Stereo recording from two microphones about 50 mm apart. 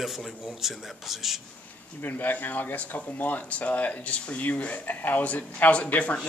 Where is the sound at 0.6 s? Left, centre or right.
Centre.